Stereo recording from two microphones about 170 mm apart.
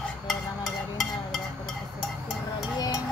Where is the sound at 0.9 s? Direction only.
Centre (ahead or behind).